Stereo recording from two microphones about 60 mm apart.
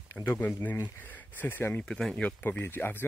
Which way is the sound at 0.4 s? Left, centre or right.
Left.